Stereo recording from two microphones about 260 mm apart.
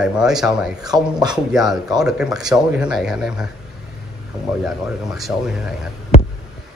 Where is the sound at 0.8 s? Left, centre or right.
Centre.